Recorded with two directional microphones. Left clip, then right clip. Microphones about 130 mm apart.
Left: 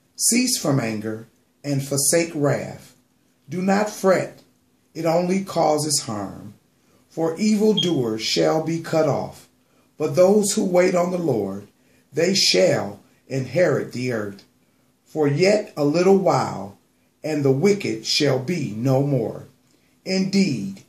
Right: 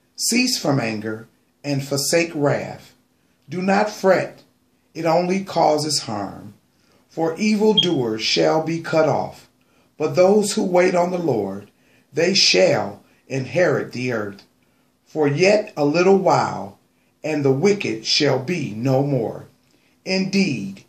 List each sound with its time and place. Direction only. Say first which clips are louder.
0.3 s speech: right 2 dB; 30° left (ahead or behind)
15.1 s speech: right 2 dB; 25° left (ahead or behind)